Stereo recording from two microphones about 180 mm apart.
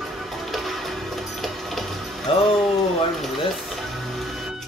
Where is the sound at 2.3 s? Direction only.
30° left (ahead or behind).